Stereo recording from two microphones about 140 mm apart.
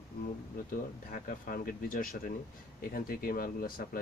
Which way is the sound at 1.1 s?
85° left.